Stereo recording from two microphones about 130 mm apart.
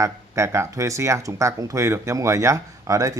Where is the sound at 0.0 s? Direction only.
20° right (ahead or behind).